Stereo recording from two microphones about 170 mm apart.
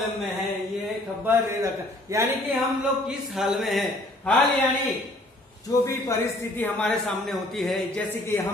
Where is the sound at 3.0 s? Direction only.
Centre (ahead or behind).